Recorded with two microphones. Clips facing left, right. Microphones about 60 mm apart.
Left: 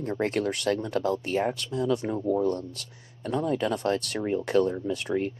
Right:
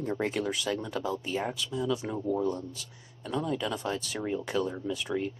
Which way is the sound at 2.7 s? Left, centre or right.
Left.